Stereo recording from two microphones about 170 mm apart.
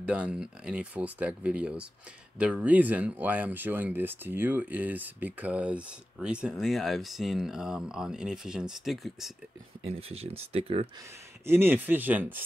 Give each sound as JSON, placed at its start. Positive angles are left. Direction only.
{"t": 0.0, "sound": "speech", "side_deg": -5}
{"t": 9.8, "sound": "speech", "side_deg": -35}
{"t": 11.4, "sound": "speech", "side_deg": -15}